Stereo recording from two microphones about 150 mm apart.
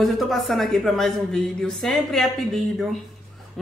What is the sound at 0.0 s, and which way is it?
Speech, centre (ahead or behind).